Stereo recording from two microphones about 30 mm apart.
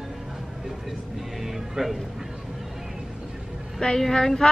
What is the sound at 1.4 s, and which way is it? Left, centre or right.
Music, centre.